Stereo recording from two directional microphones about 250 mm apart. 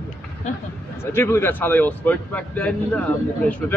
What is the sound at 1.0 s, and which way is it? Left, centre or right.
Speech, centre.